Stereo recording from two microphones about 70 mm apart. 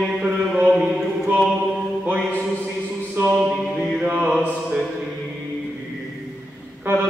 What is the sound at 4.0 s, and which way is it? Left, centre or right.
Mantra, right.